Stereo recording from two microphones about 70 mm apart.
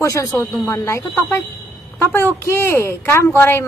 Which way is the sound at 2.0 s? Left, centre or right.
Left.